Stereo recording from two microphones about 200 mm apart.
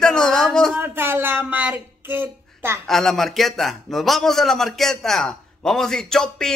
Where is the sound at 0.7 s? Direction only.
10° right (ahead or behind).